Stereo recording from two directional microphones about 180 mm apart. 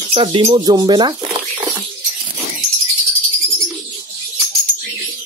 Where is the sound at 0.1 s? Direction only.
30° right (ahead or behind).